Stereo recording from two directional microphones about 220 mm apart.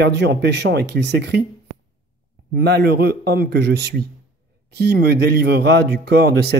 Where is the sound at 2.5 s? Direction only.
45° right (ahead or behind).